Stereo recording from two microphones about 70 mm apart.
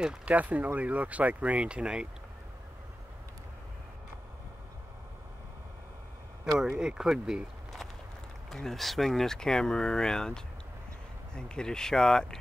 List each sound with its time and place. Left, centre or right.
0.0 s speech: centre
0.3 s speech: right
6.8 s speech: centre
8.5 s speech: centre